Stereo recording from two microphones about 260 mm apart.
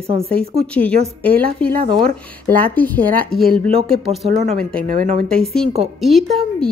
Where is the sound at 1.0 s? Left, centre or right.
Right.